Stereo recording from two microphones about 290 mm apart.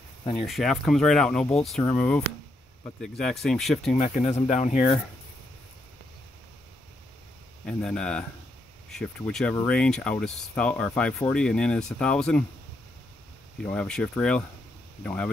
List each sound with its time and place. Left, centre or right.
0.2 s speech: centre
0.5 s speech: centre
3.9 s speech: left
7.6 s speech: centre
13.6 s speech: centre